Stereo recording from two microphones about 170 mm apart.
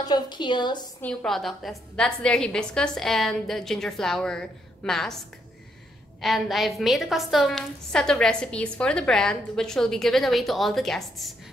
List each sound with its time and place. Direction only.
0.0 s a woman's voice: 25° left (ahead or behind)
1.0 s a woman's voice: centre (ahead or behind)
6.2 s a woman's voice: centre (ahead or behind)